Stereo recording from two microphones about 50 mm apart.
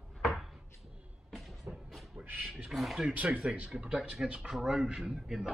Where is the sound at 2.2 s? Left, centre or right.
Centre.